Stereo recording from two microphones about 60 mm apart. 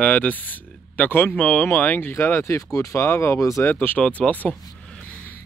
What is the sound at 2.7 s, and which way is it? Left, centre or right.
Speech, left.